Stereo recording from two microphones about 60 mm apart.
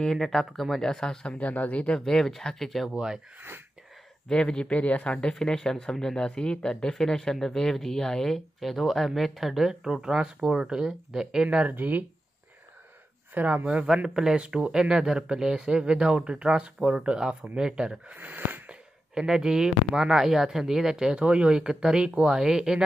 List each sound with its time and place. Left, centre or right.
0.0 s speech: centre
2.0 s speech: centre
2.9 s speech: centre
3.3 s speech: right
4.3 s speech: centre
11.7 s speech: right
13.3 s speech: right
13.8 s speech: centre
18.1 s speech: right
18.7 s speech: centre